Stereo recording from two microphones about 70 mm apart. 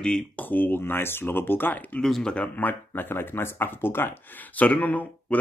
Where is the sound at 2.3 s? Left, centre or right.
Left.